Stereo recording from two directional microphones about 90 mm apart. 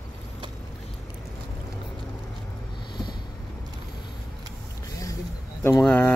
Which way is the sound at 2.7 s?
60° left (ahead or behind).